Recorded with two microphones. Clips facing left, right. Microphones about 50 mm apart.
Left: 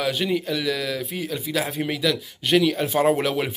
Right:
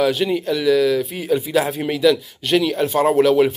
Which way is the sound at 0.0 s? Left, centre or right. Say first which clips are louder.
Right 5 dB; centre.